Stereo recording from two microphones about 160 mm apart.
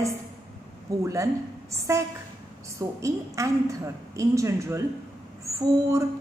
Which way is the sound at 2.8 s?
20° right (ahead or behind).